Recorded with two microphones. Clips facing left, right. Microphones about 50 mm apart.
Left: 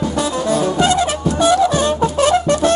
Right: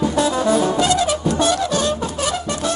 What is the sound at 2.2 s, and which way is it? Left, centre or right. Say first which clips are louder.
Music: left 9 dB; left.